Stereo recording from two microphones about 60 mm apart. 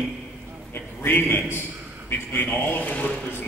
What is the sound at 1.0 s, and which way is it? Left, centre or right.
A man's voice, left.